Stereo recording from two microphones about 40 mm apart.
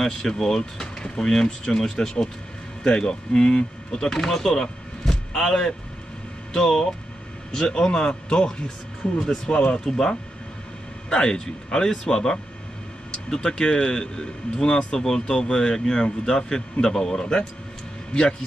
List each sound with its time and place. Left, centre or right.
0.0 s a man's voice: centre
17.2 s a man's voice: left